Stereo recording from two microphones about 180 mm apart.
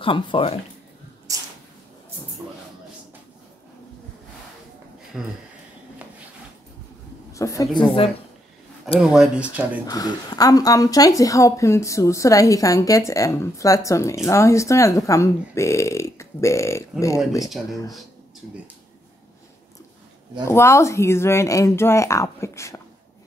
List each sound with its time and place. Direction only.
0.0 s speech: 30° left (ahead or behind)
1.3 s a sound: 20° right (ahead or behind)
5.1 s speech: 5° right (ahead or behind)
7.3 s speech: 20° left (ahead or behind)
9.0 s speech: 5° right (ahead or behind)
9.8 s speech: 20° left (ahead or behind)
20.4 s speech: 15° left (ahead or behind)